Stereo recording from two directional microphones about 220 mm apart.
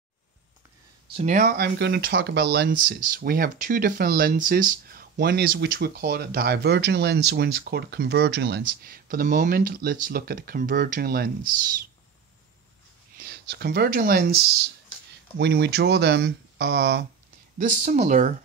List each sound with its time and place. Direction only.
1.1 s speech: 35° right (ahead or behind)
13.2 s speech: 50° right (ahead or behind)
17.6 s speech: 35° right (ahead or behind)